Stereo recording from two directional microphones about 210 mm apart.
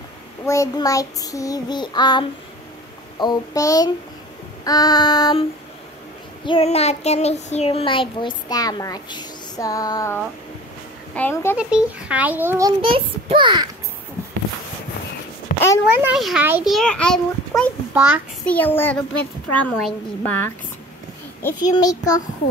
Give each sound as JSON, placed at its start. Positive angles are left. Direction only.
{"t": 0.5, "sound": "child singing", "side_deg": 15}
{"t": 6.4, "sound": "child singing", "side_deg": 25}
{"t": 11.5, "sound": "a child's voice", "side_deg": -5}
{"t": 15.9, "sound": "a child's voice", "side_deg": -5}
{"t": 17.9, "sound": "a child's voice", "side_deg": -5}
{"t": 18.4, "sound": "child singing", "side_deg": 10}